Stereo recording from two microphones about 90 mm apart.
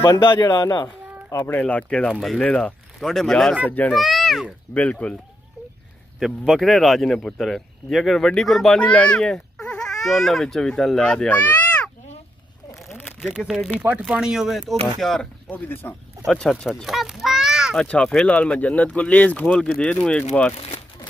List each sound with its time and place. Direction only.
0.3 s speech: 50° left (ahead or behind)
1.5 s speech: 15° left (ahead or behind)
3.6 s speech: 20° left (ahead or behind)
3.9 s a child's voice: centre (ahead or behind)
4.7 s speech: 15° left (ahead or behind)
6.1 s speech: centre (ahead or behind); by 11.9 s 15° left (ahead or behind)
13.7 s speech: 15° right (ahead or behind); by 15.2 s 5° left (ahead or behind)
15.5 s speech: 20° left (ahead or behind)
16.3 s speech: centre (ahead or behind)
17.7 s speech: 10° left (ahead or behind)